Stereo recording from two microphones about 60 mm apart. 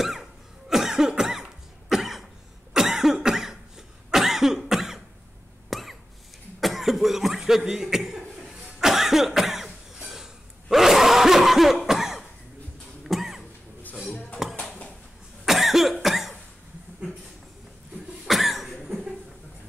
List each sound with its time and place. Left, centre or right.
0.0 s cough: centre
5.7 s a sound: centre
6.6 s cough: centre
14.0 s a sound: left
15.4 s cough: centre
18.2 s cough: centre